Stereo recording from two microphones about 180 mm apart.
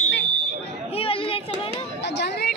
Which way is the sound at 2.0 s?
65° left (ahead or behind).